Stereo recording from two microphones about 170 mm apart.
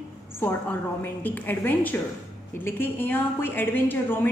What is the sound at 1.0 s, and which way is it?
A woman's voice, 10° left (ahead or behind).